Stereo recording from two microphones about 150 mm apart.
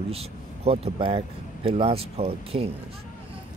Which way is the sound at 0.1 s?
40° right (ahead or behind).